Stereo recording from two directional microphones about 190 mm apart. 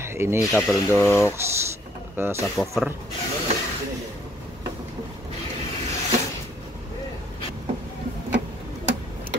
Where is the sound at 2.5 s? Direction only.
Centre (ahead or behind).